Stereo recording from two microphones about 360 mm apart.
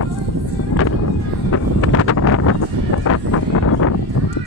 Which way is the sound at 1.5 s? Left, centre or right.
Left.